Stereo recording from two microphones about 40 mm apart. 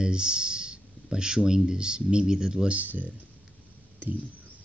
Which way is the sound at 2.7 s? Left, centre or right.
Right.